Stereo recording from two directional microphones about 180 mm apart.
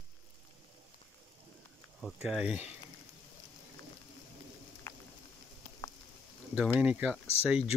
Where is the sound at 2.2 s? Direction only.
5° right (ahead or behind).